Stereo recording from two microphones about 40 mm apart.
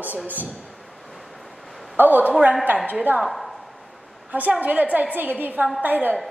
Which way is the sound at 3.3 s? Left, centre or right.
Centre.